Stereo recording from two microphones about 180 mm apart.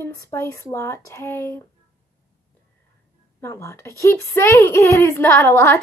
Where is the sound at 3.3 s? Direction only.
15° left (ahead or behind).